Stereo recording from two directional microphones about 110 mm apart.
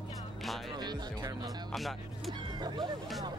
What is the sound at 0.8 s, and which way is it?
Speech, 35° right (ahead or behind).